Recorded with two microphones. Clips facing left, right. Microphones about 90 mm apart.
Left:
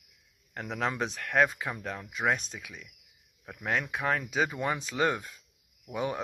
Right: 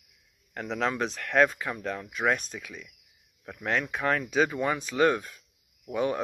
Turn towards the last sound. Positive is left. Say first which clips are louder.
# right 4 dB
turn(degrees=20)  # may be behind; listen again after turning